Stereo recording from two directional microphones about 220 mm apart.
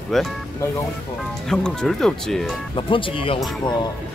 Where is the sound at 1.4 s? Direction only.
5° left (ahead or behind).